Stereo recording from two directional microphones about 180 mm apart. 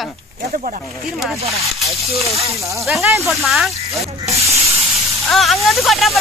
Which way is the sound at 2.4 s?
15° right (ahead or behind).